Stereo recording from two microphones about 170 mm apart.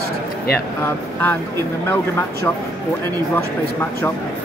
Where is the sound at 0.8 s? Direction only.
10° left (ahead or behind).